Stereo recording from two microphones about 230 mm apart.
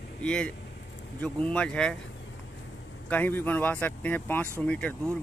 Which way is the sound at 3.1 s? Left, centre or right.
Centre.